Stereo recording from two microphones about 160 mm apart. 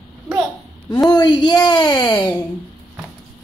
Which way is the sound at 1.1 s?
25° left (ahead or behind).